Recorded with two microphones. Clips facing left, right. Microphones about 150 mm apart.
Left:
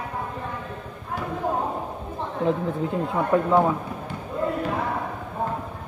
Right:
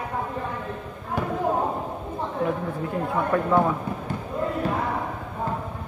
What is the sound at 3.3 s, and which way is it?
Speech, 20° left (ahead or behind).